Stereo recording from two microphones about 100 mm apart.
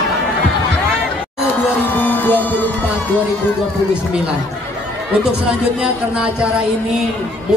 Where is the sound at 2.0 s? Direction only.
20° left (ahead or behind).